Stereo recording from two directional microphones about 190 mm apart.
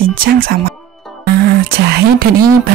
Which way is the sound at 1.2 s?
55° right (ahead or behind).